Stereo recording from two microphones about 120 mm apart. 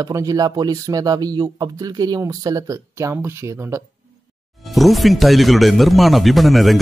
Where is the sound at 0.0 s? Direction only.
30° right (ahead or behind).